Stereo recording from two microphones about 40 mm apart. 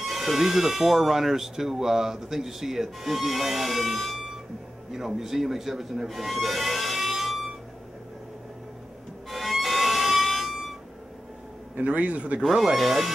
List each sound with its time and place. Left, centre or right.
0.0 s speech: centre
9.3 s music: centre
11.9 s speech: right
12.4 s speech: centre